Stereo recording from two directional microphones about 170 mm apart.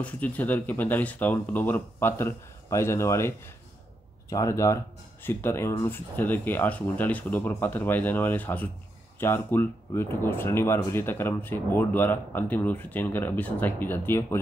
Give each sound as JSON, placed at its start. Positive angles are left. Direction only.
{"t": 0.0, "sound": "speech", "side_deg": 10}